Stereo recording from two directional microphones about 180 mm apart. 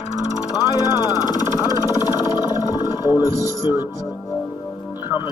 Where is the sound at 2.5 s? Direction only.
20° left (ahead or behind).